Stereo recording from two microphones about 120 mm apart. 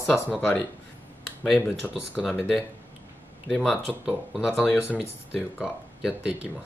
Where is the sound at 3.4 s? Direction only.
Centre (ahead or behind).